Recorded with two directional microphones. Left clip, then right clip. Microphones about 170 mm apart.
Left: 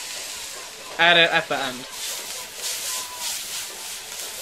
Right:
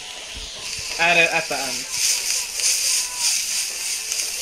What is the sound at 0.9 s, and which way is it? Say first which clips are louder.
Speech: left 1 dB; 15° left (ahead or behind).